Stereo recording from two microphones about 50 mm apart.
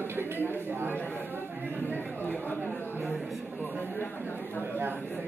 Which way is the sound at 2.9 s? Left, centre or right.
Right.